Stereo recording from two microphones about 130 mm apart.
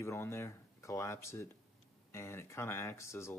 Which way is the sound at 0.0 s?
20° left (ahead or behind).